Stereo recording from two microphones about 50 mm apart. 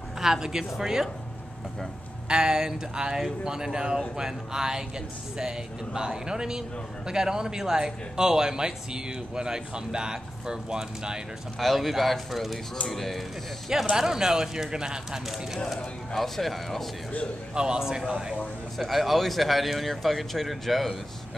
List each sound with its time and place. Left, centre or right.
0.2 s speech: centre
2.2 s speech: centre
11.6 s speech: centre
13.8 s speech: centre
16.2 s speech: centre
17.6 s speech: centre
18.8 s speech: centre